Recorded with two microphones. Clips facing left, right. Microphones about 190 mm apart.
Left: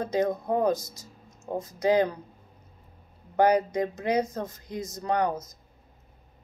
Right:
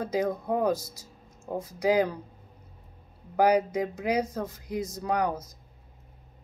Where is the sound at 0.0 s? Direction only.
10° right (ahead or behind).